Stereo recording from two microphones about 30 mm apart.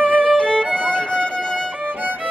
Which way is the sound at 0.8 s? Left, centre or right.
Left.